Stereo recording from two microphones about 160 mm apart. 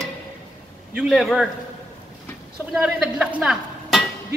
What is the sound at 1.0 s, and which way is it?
Speech, 5° right (ahead or behind).